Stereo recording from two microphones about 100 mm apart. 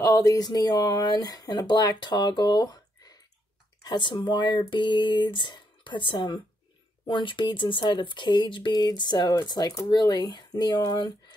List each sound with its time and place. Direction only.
0.0 s speech: 35° left (ahead or behind)